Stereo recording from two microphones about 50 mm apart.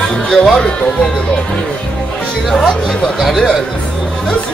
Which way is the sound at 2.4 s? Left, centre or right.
Centre.